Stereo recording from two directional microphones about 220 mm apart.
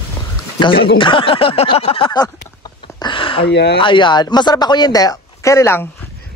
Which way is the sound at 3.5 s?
50° left (ahead or behind).